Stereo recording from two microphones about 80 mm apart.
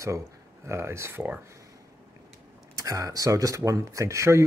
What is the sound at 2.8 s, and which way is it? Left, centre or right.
Speech, right.